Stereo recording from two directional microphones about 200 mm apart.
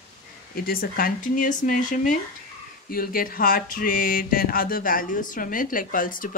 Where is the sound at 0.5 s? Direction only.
45° left (ahead or behind).